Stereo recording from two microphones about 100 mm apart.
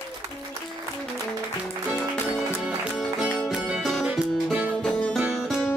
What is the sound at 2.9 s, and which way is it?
Music, 5° right (ahead or behind).